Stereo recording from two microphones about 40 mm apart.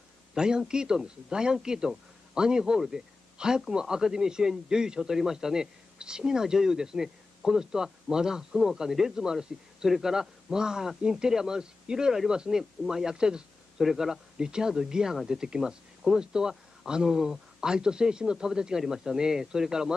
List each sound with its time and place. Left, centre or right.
0.3 s a man's voice: centre
13.8 s a man's voice: centre